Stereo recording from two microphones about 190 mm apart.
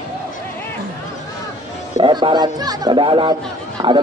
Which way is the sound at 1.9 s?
25° right (ahead or behind).